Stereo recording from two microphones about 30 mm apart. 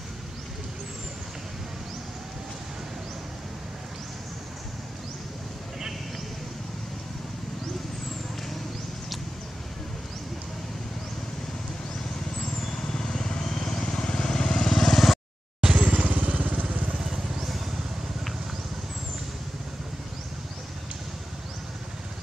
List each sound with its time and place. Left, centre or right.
12.7 s vehicle: left
15.8 s vehicle: right
16.9 s vehicle: centre